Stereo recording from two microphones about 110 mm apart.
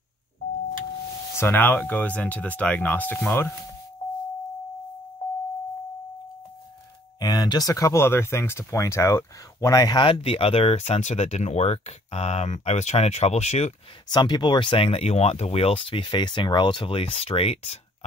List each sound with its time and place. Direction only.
1.3 s speech: 20° left (ahead or behind)
7.2 s speech: 40° left (ahead or behind); by 13.7 s 75° left (ahead or behind)
14.0 s speech: 40° left (ahead or behind); by 17.7 s 60° left (ahead or behind)